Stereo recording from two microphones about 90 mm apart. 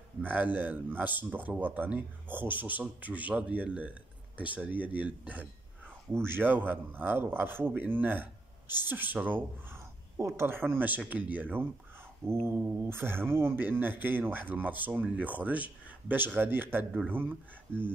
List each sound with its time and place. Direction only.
0.2 s a man's voice: 20° right (ahead or behind)
10.1 s speech: 30° right (ahead or behind)